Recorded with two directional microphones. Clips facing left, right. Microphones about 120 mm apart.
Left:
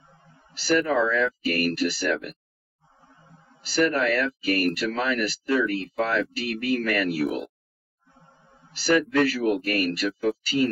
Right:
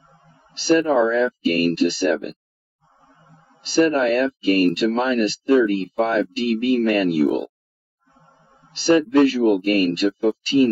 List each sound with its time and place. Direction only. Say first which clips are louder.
0.5 s speech: right 6 dB; 25° right (ahead or behind)
3.6 s speech: right 6 dB; 25° right (ahead or behind)
8.7 s speech: right 6 dB; 25° right (ahead or behind)